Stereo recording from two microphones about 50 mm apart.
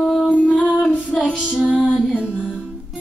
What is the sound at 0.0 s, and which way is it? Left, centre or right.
Music, centre.